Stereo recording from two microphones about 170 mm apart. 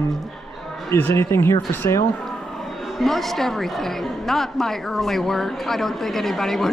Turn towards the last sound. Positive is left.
turn(degrees=0)  # may be behind; listen again after turning